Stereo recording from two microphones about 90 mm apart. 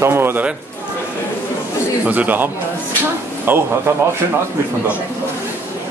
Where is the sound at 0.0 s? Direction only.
25° right (ahead or behind).